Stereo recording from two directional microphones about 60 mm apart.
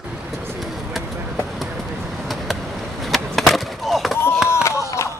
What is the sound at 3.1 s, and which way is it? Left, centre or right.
Skateboard, centre.